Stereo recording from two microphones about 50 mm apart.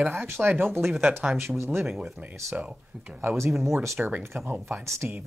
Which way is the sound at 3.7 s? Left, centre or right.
Right.